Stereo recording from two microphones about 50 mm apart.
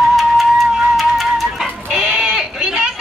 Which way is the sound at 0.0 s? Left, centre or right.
Centre.